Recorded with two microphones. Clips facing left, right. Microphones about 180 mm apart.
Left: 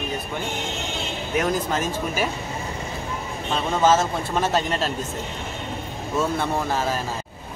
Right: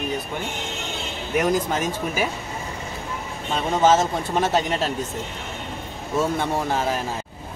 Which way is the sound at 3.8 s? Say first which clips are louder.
Right 1 dB; 20° right (ahead or behind).